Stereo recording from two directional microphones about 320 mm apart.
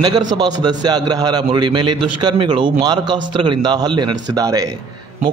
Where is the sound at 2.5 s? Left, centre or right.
Centre.